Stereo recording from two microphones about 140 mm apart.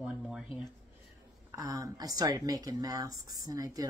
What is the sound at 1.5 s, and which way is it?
Speech, 25° right (ahead or behind).